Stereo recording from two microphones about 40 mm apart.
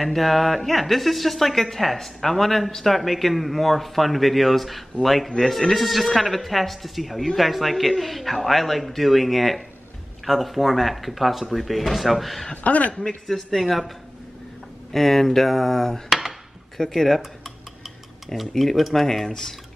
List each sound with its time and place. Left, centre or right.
0.0 s speech: centre
12.6 s a man's voice: left
12.9 s speech: centre
16.1 s dishes: centre
16.9 s speech: centre
17.4 s cutlery: centre
18.5 s speech: centre